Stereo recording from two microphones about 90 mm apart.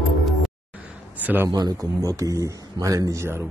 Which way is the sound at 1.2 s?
20° right (ahead or behind).